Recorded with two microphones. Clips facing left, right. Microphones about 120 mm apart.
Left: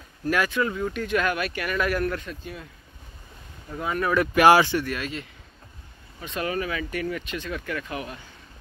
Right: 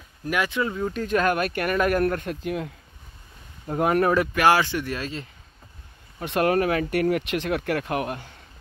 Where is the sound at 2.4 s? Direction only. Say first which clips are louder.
Right 10 dB; 80° right.